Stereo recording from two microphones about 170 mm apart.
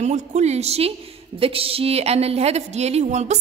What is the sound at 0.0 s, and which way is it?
A woman's voice, 45° right (ahead or behind).